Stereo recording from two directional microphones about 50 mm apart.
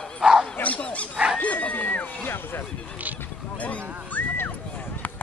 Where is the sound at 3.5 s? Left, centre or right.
Left.